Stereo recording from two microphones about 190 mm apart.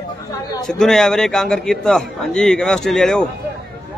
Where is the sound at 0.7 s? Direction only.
5° left (ahead or behind).